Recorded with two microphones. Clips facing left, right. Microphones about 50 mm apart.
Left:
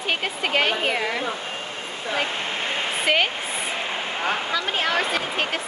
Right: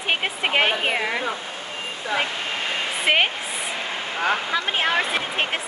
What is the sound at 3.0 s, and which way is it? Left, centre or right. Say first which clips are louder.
Speech: right 2 dB; right.